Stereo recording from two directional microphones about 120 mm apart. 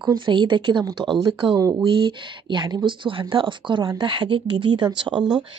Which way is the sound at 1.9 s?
45° right (ahead or behind).